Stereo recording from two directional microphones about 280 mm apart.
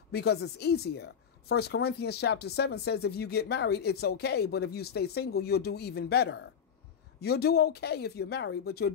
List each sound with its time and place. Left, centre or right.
0.1 s speech: left